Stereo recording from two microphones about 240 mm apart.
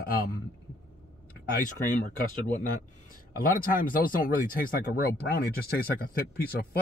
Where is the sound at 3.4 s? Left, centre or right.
Left.